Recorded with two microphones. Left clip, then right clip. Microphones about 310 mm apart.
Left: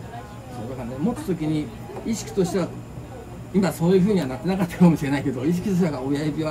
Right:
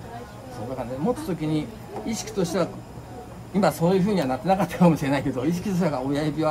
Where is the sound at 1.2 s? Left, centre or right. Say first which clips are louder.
Left 1 dB; centre.